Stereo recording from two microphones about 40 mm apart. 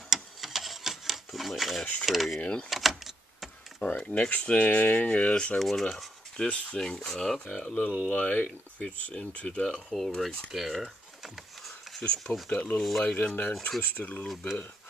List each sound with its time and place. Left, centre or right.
0.1 s a sound: centre
2.0 s speech: centre
2.7 s power windows: centre
3.8 s speech: left
4.6 s speech: left
4.9 s speech: left
5.6 s speech: centre
6.3 s speech: left
8.5 s speech: left
9.8 s speech: centre
10.5 s a sound: centre
12.0 s speech: left